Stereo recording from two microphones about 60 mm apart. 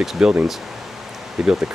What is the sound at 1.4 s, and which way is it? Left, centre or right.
Speech, centre.